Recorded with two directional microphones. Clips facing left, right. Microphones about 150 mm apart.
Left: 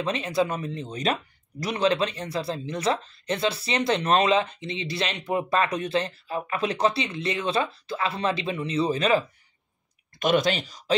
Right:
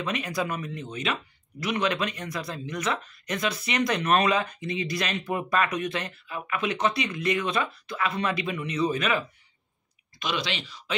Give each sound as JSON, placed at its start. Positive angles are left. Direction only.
{"t": 0.0, "sound": "speech", "side_deg": 30}
{"t": 10.1, "sound": "speech", "side_deg": 50}